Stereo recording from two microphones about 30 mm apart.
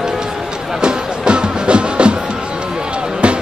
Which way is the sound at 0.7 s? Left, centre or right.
Right.